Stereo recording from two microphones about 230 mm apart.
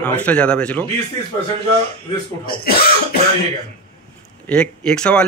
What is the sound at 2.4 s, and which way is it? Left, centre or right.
Speech, left.